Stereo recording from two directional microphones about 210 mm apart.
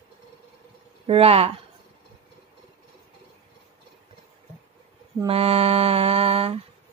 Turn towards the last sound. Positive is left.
turn(degrees=-30)  # may be behind; listen again after turning